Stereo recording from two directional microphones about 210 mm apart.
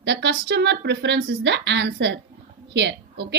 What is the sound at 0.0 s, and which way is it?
A woman's voice, 55° right (ahead or behind).